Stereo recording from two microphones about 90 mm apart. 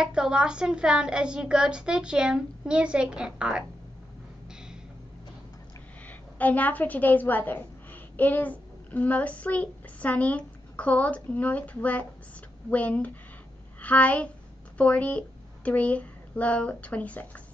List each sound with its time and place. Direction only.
0.0 s a woman's voice: 10° right (ahead or behind)
6.0 s a woman's voice: 20° left (ahead or behind)